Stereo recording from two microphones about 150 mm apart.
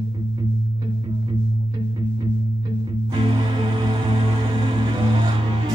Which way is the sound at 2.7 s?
35° right (ahead or behind).